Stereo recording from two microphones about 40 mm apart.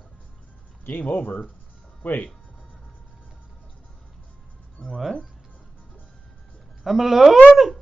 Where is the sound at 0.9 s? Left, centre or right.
Left.